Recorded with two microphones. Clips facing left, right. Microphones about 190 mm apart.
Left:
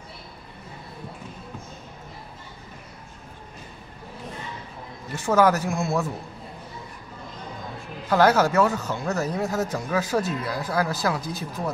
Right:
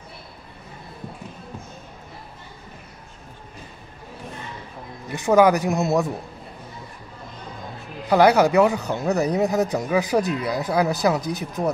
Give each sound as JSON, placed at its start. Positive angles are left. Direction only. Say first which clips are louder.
{"t": 5.1, "sound": "speech", "louder": "right 4 dB", "side_deg": -15}
{"t": 8.1, "sound": "speech", "louder": "right 3 dB", "side_deg": -15}